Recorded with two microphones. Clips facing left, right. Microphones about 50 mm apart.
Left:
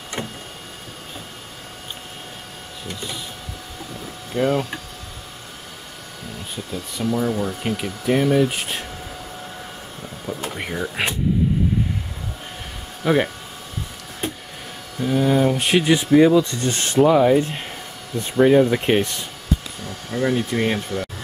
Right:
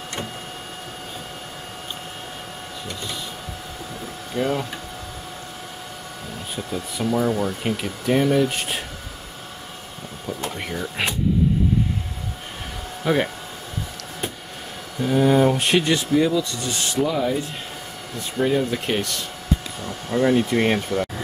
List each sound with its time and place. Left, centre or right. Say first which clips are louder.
4.3 s speech: left 3 dB; left
6.7 s speech: even; centre
10.2 s speech: left 1 dB; centre
13.0 s speech: left 2 dB; centre
15.0 s speech: right 1 dB; centre
16.1 s speech: left 6 dB; left
20.1 s speech: right 3 dB; centre